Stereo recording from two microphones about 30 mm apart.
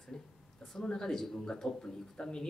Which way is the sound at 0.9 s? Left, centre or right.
Left.